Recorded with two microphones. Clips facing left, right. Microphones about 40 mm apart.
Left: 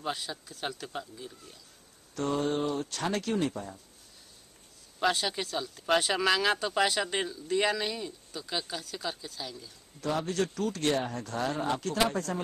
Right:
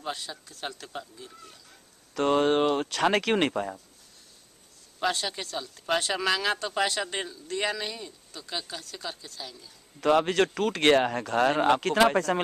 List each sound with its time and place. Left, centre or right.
0.0 s speech: centre
2.1 s speech: right
5.0 s speech: centre
9.9 s speech: right